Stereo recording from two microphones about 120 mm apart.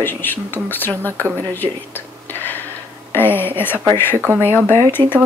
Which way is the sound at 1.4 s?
15° left (ahead or behind).